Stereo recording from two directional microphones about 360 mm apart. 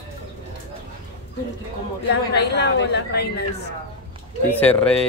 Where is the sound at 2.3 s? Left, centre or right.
Left.